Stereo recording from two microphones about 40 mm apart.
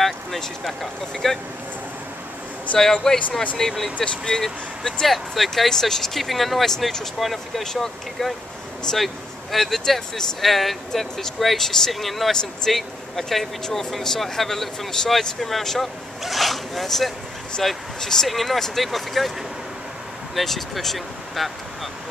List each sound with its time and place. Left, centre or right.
0.4 s speech: centre
2.8 s speech: centre
5.0 s speech: centre
7.6 s speech: centre
12.3 s speech: centre
12.7 s speech: centre
20.3 s speech: centre